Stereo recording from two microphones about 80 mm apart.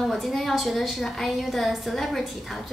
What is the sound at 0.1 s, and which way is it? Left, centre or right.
Speech, centre.